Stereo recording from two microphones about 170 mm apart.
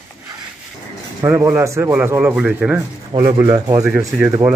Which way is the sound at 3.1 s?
25° right (ahead or behind).